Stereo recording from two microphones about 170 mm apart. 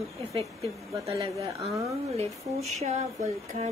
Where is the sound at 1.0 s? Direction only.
20° right (ahead or behind).